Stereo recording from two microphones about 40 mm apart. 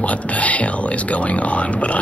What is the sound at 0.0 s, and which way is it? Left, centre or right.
A man's voice, left.